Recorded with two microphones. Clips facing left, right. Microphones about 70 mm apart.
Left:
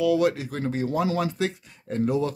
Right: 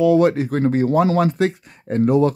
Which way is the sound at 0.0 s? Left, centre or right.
Right.